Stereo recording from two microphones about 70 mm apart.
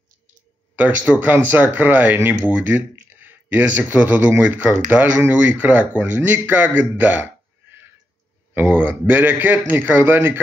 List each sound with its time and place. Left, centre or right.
0.7 s speech: right
8.7 s speech: right